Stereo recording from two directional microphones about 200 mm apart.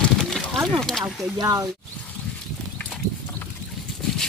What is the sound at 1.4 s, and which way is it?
Speech, 15° right (ahead or behind).